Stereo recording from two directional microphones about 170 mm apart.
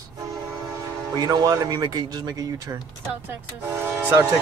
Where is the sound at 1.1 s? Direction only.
20° right (ahead or behind).